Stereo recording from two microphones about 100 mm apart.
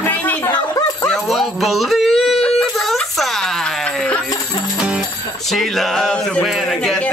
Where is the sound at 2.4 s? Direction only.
5° left (ahead or behind).